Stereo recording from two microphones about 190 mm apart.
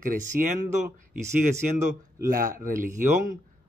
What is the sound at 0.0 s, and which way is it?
Speech, 45° right (ahead or behind).